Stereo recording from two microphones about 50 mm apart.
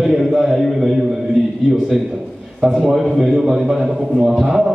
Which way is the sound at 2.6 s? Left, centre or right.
Centre.